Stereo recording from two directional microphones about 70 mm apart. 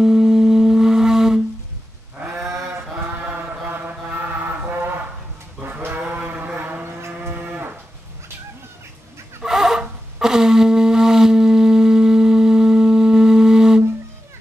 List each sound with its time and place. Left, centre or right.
0.0 s music: centre
3.3 s chant: right
5.6 s livestock: right
6.0 s a sound: centre
7.3 s moo: right
9.4 s wind instrument: centre